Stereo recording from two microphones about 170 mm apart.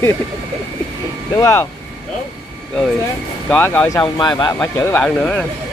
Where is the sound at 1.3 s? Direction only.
20° left (ahead or behind).